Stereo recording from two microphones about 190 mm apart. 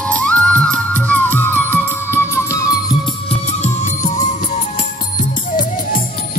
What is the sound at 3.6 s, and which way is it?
Music, 40° left (ahead or behind).